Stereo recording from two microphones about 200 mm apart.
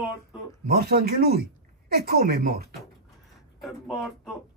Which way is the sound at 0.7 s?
50° right (ahead or behind).